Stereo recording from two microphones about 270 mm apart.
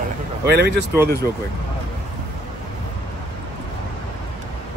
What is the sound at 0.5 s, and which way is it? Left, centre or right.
Speech, right.